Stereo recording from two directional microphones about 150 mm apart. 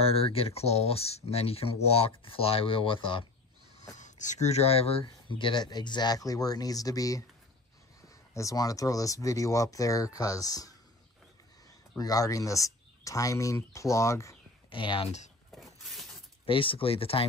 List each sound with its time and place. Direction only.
0.0 s speech: 40° left (ahead or behind)
3.9 s speech: 55° left (ahead or behind); by 7.2 s 25° left (ahead or behind)
8.4 s speech: 20° left (ahead or behind)
12.0 s speech: 25° left (ahead or behind)
14.7 s speech: 35° left (ahead or behind)
15.5 s shatter: centre (ahead or behind)
16.4 s speech: 35° left (ahead or behind)